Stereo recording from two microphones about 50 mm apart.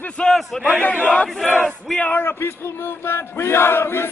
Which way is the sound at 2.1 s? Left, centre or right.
Left.